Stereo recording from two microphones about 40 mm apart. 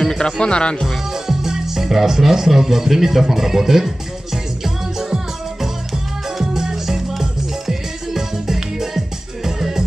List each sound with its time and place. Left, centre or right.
0.2 s speech: left
1.2 s music: centre